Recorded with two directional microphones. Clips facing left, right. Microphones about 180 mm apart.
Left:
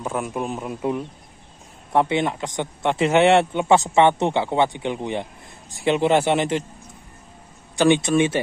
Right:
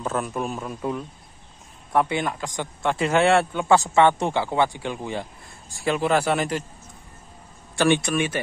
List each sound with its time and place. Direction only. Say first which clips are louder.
0.0 s a man's voice: left 1 dB; 15° left (ahead or behind)
7.7 s speech: left 4 dB; 15° left (ahead or behind)